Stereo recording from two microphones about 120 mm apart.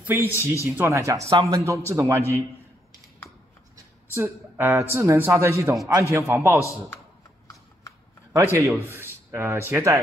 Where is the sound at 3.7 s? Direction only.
20° right (ahead or behind).